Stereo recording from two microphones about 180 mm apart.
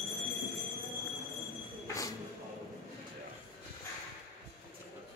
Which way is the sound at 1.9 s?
20° left (ahead or behind).